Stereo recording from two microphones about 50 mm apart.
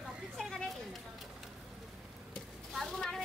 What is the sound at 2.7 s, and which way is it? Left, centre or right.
Vehicle, centre.